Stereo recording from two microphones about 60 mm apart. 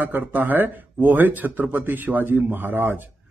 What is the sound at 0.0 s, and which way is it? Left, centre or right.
A man's voice, right.